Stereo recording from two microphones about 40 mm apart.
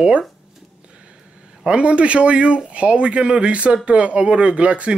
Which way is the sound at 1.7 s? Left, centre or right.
Right.